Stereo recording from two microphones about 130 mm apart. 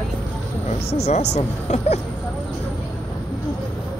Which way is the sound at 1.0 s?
60° left (ahead or behind).